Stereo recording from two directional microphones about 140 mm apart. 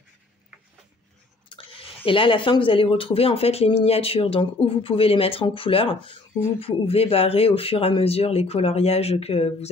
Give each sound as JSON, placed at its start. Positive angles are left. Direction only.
{"t": 1.5, "sound": "speech", "side_deg": 40}